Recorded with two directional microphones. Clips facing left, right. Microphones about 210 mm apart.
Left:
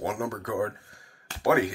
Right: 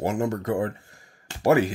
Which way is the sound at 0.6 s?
25° right (ahead or behind).